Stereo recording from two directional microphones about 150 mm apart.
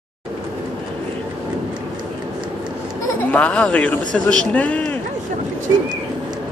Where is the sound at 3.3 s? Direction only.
10° left (ahead or behind).